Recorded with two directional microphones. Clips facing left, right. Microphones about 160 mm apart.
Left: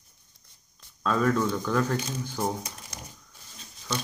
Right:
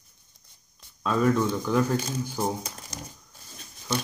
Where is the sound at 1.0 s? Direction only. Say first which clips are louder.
Right 1 dB; 10° right (ahead or behind).